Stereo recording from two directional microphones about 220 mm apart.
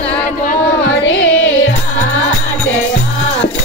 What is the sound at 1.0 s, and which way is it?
Carnatic music, 60° left (ahead or behind).